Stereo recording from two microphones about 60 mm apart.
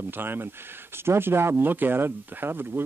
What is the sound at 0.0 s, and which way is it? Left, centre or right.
Speech, right.